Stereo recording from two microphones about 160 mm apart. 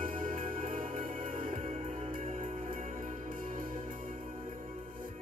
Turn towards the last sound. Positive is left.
turn(degrees=-55)  # may be behind; listen again after turning